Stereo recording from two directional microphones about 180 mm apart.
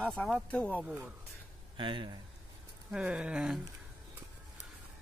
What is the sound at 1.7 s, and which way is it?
Speech, 25° right (ahead or behind).